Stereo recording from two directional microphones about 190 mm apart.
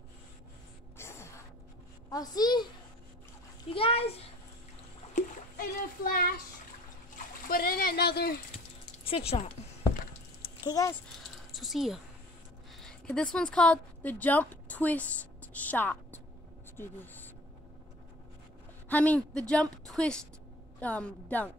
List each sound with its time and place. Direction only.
0.9 s a sound: 15° left (ahead or behind)
2.0 s a child's voice: 20° left (ahead or behind)
3.7 s a child's voice: 30° left (ahead or behind)
5.1 s splash: 50° left (ahead or behind)
7.4 s speech: 50° left (ahead or behind)
8.8 s a sound: 30° left (ahead or behind)
10.6 s speech: 20° left (ahead or behind)
11.5 s a sound: centre (ahead or behind)
12.7 s speech: 5° left (ahead or behind)
15.5 s a sound: 10° left (ahead or behind)
16.7 s speech: 10° left (ahead or behind)
18.9 s a woman's voice: 10° left (ahead or behind)